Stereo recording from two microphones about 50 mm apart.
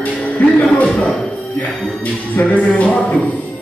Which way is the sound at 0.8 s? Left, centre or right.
Centre.